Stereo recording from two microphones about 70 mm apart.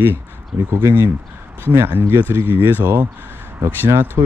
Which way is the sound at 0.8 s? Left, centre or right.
Right.